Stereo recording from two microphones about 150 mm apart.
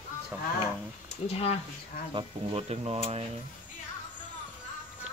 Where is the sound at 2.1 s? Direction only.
40° right (ahead or behind).